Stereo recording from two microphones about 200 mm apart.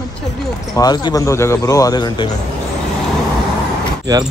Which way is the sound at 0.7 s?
20° left (ahead or behind).